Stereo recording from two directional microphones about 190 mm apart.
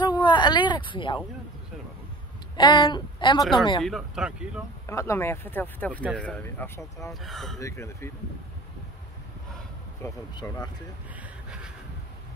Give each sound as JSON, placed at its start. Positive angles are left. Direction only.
{"t": 0.0, "sound": "a sound", "side_deg": 25}
{"t": 2.5, "sound": "a woman's voice", "side_deg": 25}
{"t": 3.8, "sound": "speech", "side_deg": 0}
{"t": 4.8, "sound": "speech", "side_deg": 15}
{"t": 7.5, "sound": "speech", "side_deg": 15}
{"t": 10.0, "sound": "a woman's voice", "side_deg": 20}